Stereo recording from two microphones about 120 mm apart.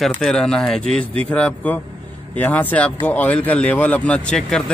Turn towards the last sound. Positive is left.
turn(degrees=5)  # may be behind; listen again after turning